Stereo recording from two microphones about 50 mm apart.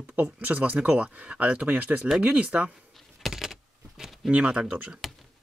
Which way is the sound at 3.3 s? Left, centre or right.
Centre.